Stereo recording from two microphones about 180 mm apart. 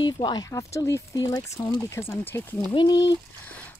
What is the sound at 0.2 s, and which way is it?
Speech, 20° left (ahead or behind).